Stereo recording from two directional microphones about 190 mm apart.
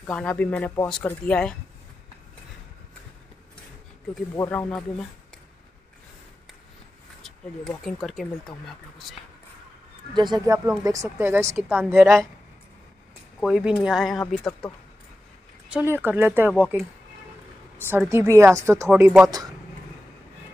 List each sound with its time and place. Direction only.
0.1 s speech: 5° left (ahead or behind)
4.4 s speech: 10° left (ahead or behind)
7.8 s speech: centre (ahead or behind)
10.1 s speech: 20° right (ahead or behind)
13.4 s speech: 5° right (ahead or behind)
15.7 s speech: 10° right (ahead or behind)
17.7 s speech: 10° right (ahead or behind)